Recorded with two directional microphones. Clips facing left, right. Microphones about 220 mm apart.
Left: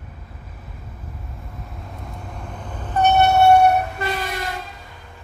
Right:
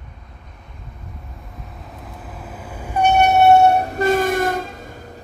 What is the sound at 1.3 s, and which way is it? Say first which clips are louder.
Train: left 1 dB; centre (ahead or behind).